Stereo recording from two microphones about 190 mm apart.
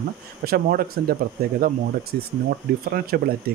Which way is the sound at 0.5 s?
50° right (ahead or behind).